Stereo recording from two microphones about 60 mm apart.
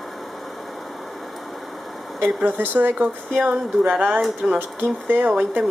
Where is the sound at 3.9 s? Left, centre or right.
Right.